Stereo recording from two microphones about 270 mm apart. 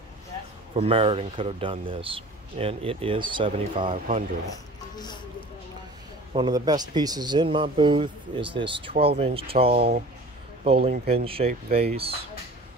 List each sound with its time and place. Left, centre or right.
0.7 s speech: right
4.9 s speech: centre
6.3 s speech: centre
9.8 s speech: right
10.6 s speech: right